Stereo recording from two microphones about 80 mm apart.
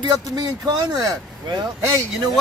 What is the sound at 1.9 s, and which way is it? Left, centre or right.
Speech, right.